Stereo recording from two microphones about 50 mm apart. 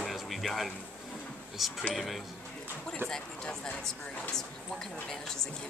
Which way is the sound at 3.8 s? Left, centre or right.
Centre.